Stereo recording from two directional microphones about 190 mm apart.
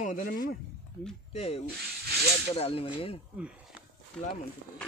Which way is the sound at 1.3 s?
35° left (ahead or behind).